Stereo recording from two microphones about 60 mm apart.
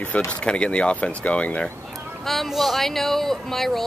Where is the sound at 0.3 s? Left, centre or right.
Centre.